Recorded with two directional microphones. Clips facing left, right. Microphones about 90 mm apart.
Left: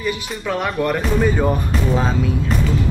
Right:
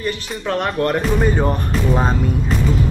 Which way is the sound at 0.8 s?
15° left (ahead or behind).